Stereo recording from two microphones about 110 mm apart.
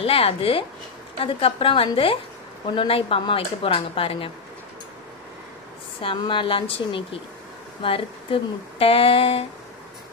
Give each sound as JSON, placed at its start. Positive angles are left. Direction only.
{"t": 0.0, "sound": "speech", "side_deg": 60}
{"t": 5.9, "sound": "a woman's voice", "side_deg": 50}